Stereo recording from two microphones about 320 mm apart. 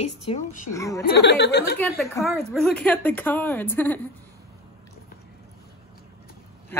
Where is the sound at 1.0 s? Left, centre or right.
Left.